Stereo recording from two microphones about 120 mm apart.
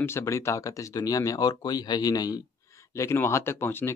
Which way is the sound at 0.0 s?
25° left (ahead or behind).